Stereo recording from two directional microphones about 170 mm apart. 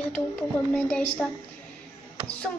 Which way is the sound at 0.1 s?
5° left (ahead or behind).